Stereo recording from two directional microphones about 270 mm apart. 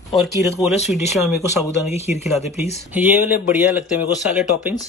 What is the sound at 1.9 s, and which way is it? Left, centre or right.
Speech, left.